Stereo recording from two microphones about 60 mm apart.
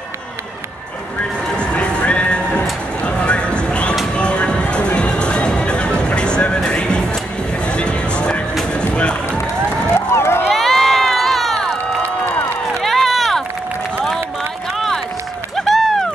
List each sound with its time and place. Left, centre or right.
1.6 s music: centre
9.9 s run: left
10.5 s crowd: centre
12.8 s run: centre
15.5 s run: centre